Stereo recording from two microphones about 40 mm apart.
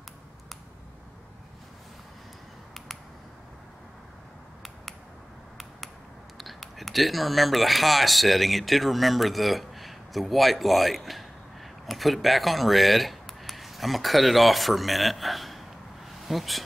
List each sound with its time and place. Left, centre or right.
6.3 s speech: centre